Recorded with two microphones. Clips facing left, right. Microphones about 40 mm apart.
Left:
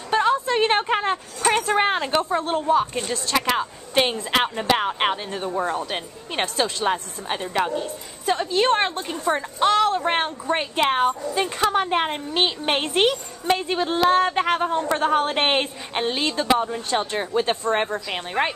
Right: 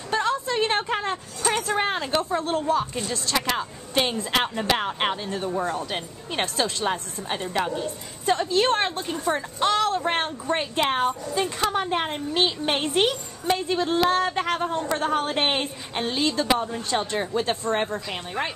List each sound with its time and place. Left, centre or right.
0.1 s a sound: centre
1.7 s a woman's voice: left
5.6 s a woman's voice: left
5.9 s a woman's voice: centre
16.7 s a woman's voice: centre
18.1 s a woman's voice: left